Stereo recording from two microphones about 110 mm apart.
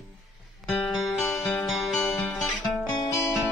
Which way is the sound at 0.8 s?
Centre (ahead or behind).